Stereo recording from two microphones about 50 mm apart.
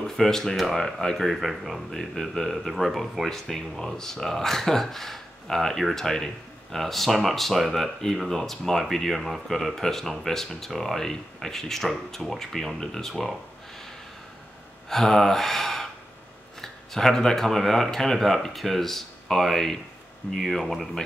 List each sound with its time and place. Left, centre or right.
0.0 s speech: centre
1.9 s speech: centre
2.5 s speech: centre
14.9 s speech: centre